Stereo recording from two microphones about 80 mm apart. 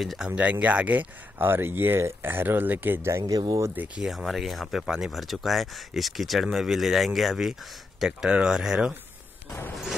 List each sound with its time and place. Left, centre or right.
0.0 s speech: centre
0.3 s speech: centre
3.1 s speech: right
3.7 s speech: right
4.0 s speech: centre